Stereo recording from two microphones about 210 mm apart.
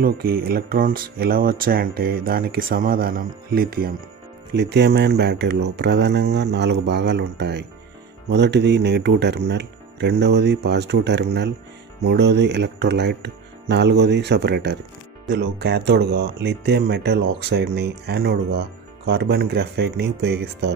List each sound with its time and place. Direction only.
0.0 s speech: 45° right (ahead or behind)